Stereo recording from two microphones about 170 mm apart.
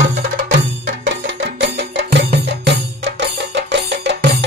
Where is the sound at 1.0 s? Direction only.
90° right.